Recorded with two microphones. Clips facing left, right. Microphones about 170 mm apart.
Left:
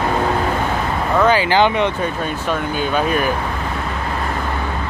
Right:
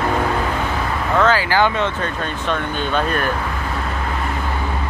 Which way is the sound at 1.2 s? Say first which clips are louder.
Left 2 dB; 15° left (ahead or behind).